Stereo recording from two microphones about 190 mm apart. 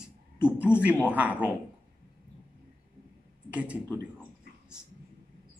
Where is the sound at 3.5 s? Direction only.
5° right (ahead or behind).